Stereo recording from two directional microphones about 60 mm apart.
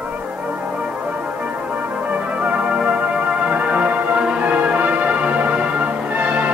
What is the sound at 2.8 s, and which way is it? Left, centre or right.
Music, centre.